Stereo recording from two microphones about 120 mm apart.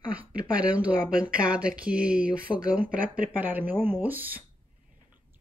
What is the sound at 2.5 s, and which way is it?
Speech, 10° left (ahead or behind).